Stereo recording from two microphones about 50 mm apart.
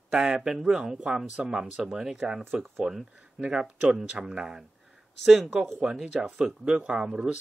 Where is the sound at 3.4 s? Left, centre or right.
Right.